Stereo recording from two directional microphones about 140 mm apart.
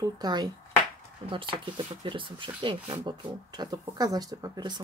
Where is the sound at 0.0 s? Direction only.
30° right (ahead or behind).